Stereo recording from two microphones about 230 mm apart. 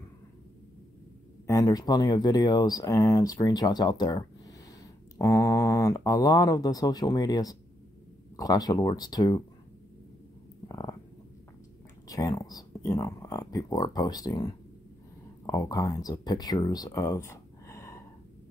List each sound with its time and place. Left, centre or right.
1.5 s speech: centre
10.7 s stomach rumble: centre
12.1 s speech: centre